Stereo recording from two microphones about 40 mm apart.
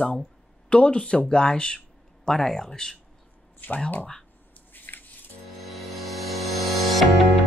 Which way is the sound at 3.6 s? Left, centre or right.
Left.